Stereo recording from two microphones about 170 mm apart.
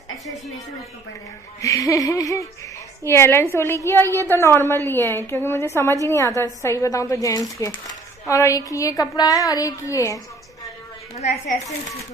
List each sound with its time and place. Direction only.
1.6 s a woman's voice: 20° left (ahead or behind)
11.6 s a woman's voice: 20° left (ahead or behind)